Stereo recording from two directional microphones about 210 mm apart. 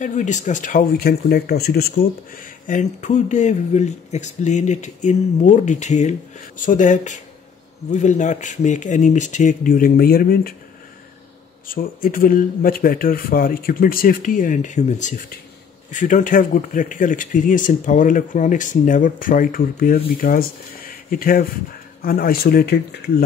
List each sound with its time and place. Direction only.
0.0 s speech: 35° left (ahead or behind)
11.6 s speech: 40° left (ahead or behind)